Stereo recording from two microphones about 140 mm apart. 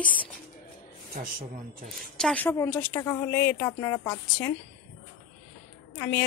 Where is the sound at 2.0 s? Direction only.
5° left (ahead or behind).